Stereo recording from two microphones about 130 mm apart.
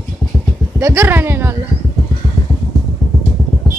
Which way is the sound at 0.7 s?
20° right (ahead or behind).